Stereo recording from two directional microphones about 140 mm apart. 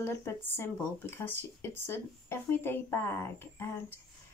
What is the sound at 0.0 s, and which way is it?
Speech, 20° left (ahead or behind).